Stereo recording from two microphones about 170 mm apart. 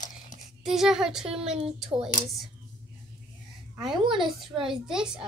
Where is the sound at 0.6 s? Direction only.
Centre (ahead or behind).